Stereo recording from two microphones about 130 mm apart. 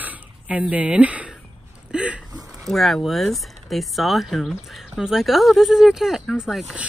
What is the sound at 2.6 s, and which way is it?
Speech, centre (ahead or behind).